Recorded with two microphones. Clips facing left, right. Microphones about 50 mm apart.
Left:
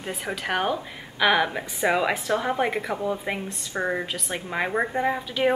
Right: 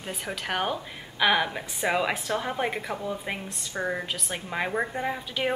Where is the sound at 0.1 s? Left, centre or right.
Centre.